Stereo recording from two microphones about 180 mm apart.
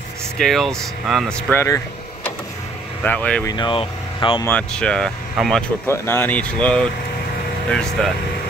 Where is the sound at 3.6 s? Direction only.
25° left (ahead or behind).